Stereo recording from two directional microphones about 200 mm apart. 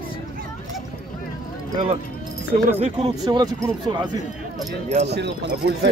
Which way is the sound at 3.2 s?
20° right (ahead or behind).